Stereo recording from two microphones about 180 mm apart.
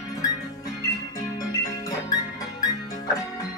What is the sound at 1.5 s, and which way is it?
Music, 20° left (ahead or behind).